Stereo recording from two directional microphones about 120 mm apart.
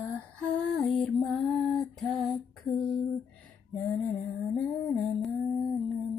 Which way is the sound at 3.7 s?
10° left (ahead or behind).